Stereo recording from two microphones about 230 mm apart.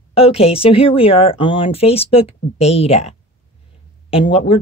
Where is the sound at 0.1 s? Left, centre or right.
Left.